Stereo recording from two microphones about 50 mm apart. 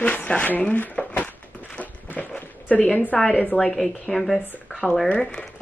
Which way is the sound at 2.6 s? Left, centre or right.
Left.